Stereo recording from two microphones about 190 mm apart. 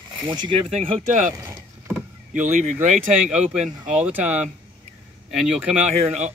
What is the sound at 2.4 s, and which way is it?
Speech, 40° right (ahead or behind).